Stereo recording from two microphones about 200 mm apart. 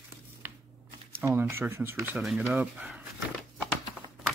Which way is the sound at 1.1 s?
15° right (ahead or behind).